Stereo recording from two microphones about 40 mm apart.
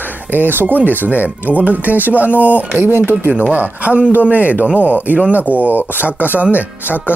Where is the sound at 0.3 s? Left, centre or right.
Right.